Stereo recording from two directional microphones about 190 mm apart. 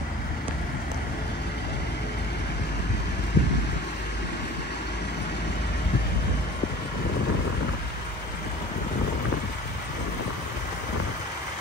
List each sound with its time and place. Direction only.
3.4 s vehicle: 65° left (ahead or behind)